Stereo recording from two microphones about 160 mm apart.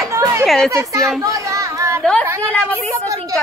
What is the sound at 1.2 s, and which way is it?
Chatter, 20° right (ahead or behind).